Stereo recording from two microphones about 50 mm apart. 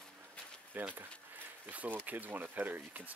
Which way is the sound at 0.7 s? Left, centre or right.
Right.